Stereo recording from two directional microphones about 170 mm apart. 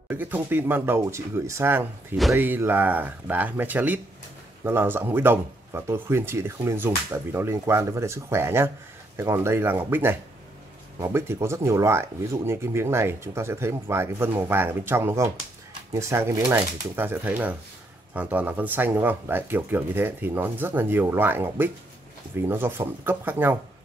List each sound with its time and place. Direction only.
0.1 s speech: 10° right (ahead or behind)